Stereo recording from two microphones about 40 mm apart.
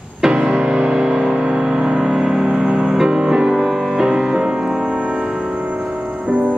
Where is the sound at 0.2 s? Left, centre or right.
Right.